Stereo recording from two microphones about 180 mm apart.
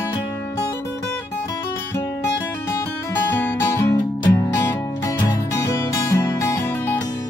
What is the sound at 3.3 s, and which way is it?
Music, 15° left (ahead or behind).